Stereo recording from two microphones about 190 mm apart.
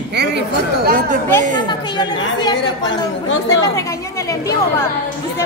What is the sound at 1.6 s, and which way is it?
A woman's voice, 25° left (ahead or behind).